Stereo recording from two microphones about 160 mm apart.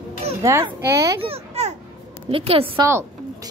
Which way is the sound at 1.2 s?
35° right (ahead or behind).